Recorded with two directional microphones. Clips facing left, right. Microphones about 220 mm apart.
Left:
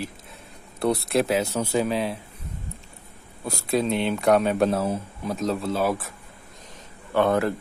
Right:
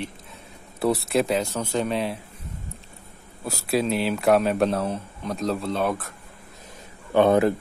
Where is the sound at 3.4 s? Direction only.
5° right (ahead or behind).